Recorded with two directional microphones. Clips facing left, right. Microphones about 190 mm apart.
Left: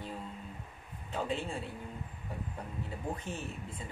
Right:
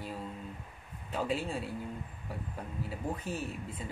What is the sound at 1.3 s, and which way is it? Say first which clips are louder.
Speech: right 3 dB; 10° right (ahead or behind).